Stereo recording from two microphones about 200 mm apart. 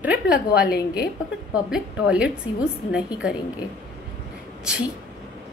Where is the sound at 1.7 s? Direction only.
5° right (ahead or behind).